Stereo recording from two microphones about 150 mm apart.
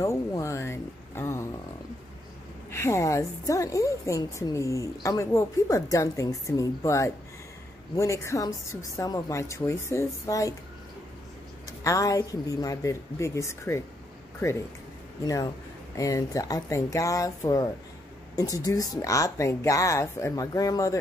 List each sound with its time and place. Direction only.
0.0 s speech: 20° left (ahead or behind)
2.7 s a woman's voice: 20° left (ahead or behind)
11.8 s a woman's voice: 20° left (ahead or behind)
15.2 s a woman's voice: 25° left (ahead or behind)